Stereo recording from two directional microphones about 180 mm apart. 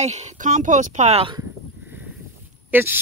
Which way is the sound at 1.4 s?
10° right (ahead or behind).